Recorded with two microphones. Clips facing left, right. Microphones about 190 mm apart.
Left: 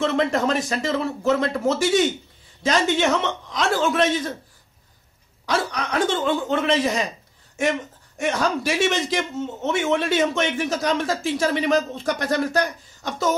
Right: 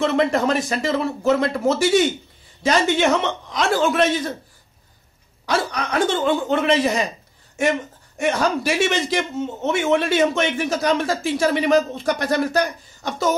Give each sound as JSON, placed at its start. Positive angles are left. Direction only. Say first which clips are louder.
{"t": 0.0, "sound": "speech", "louder": "right 2 dB", "side_deg": -10}
{"t": 5.5, "sound": "speech", "louder": "right 2 dB", "side_deg": -5}
{"t": 8.2, "sound": "speech", "louder": "right 2 dB", "side_deg": -10}